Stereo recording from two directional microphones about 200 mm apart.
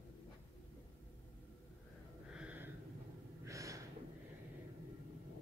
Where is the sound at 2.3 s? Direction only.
5° right (ahead or behind).